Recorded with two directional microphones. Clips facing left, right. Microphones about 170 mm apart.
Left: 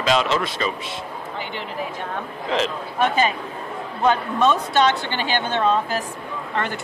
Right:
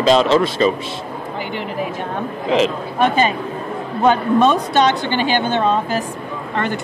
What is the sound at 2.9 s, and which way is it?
Speech, 5° left (ahead or behind).